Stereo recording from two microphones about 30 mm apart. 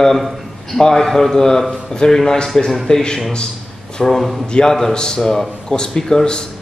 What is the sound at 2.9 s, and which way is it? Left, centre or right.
Speech, left.